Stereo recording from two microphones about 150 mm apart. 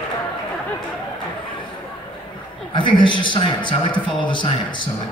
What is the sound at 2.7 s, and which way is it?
A man's voice, 30° left (ahead or behind).